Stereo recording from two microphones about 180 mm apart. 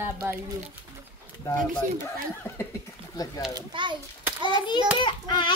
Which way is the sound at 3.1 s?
20° left (ahead or behind).